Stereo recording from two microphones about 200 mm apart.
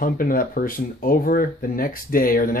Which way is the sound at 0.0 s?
45° left (ahead or behind).